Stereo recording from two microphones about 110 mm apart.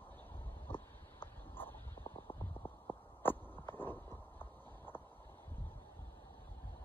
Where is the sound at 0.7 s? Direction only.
20° left (ahead or behind).